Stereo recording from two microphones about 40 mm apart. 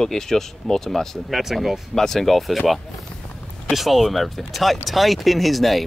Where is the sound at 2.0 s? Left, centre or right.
Centre.